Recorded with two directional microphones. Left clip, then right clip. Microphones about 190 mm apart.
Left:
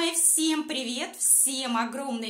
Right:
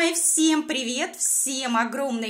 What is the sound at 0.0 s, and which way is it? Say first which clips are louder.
A woman's voice: right 5 dB; 25° right (ahead or behind).